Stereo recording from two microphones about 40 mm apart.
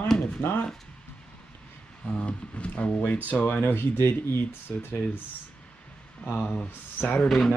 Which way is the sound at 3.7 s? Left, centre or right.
Left.